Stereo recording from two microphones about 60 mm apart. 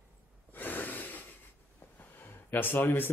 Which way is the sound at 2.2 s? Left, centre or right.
Left.